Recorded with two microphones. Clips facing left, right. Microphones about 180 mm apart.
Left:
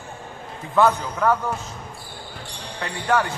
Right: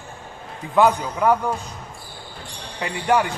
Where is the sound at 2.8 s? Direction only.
15° right (ahead or behind).